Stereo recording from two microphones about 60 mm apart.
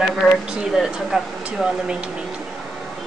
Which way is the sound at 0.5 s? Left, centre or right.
Centre.